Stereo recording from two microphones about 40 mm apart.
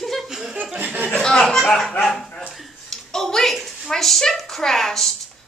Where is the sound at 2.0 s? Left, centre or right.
Centre.